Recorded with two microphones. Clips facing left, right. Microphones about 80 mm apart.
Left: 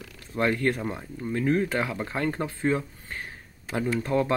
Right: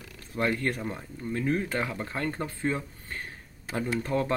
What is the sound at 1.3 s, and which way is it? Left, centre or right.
Speech, left.